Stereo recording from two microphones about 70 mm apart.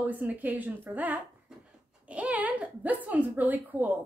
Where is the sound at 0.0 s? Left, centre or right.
Right.